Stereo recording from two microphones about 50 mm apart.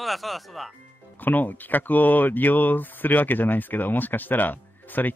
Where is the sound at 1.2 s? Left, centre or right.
Left.